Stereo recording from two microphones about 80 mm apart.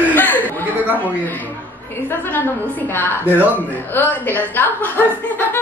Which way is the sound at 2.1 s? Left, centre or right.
Left.